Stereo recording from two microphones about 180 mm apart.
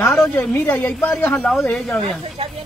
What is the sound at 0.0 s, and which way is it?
A woman's voice, 10° left (ahead or behind).